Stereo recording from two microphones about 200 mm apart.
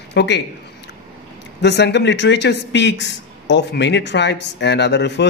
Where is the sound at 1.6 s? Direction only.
60° left (ahead or behind).